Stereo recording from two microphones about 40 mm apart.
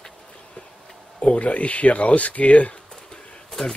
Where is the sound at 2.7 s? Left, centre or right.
Left.